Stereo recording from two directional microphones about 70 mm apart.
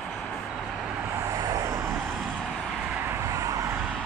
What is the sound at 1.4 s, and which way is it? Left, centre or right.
Vehicle, right.